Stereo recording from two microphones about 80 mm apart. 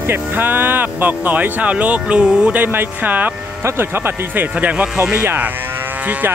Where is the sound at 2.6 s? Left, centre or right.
Right.